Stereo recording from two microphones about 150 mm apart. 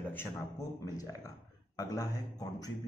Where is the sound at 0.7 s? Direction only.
25° left (ahead or behind).